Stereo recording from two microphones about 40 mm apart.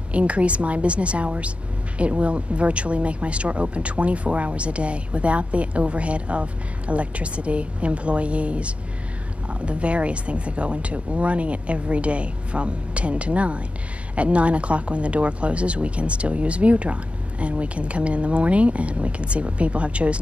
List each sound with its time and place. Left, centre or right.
0.1 s speech: right